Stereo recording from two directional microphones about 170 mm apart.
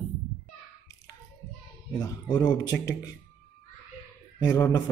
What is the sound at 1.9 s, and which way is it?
Speech, 20° left (ahead or behind).